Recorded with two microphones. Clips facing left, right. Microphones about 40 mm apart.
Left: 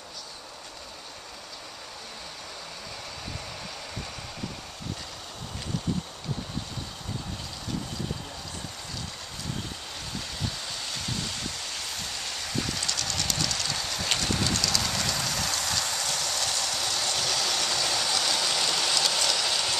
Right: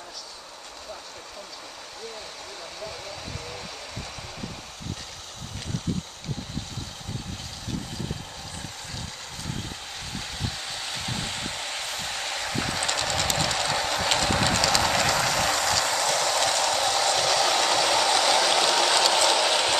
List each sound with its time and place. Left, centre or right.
10.4 s train: centre; by 15.5 s right
15.6 s ratchet: right
17.6 s a sound: right